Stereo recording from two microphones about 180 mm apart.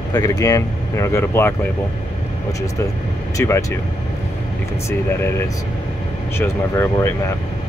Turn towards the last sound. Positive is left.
turn(degrees=15)  # may be behind; listen again after turning